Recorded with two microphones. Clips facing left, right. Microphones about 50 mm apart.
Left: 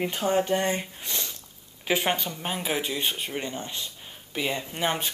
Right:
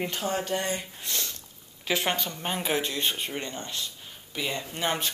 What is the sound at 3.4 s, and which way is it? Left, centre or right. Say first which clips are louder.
Speech: left 1 dB; centre.